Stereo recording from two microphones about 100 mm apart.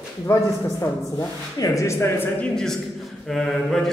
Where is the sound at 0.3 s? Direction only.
30° left (ahead or behind).